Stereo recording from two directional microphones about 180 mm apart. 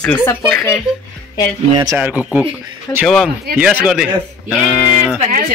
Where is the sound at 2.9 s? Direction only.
15° left (ahead or behind).